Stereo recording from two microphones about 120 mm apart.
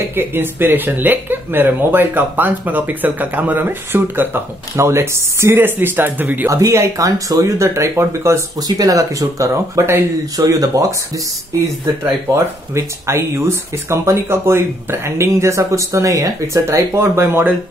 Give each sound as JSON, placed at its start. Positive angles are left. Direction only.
{"t": 0.1, "sound": "speech", "side_deg": -20}